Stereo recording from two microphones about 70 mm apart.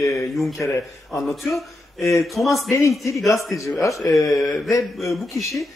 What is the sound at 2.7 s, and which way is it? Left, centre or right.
Speech, left.